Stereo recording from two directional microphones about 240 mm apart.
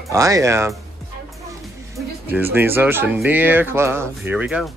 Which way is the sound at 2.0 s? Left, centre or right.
Centre.